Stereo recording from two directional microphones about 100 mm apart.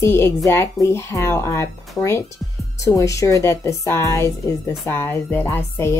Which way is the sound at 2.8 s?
30° left (ahead or behind).